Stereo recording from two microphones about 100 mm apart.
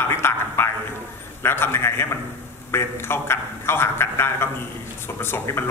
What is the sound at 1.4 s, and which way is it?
Speech, 25° left (ahead or behind).